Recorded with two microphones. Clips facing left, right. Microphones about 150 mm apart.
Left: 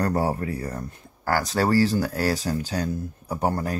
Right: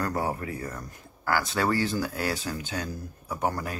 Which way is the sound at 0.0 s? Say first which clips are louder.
Left 5 dB; 35° left (ahead or behind).